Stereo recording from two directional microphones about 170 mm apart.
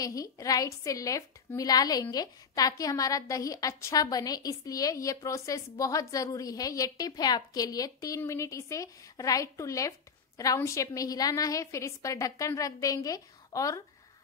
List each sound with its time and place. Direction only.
0.0 s a woman's voice: 20° left (ahead or behind)